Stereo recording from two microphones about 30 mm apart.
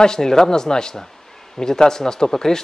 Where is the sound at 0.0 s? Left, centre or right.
Left.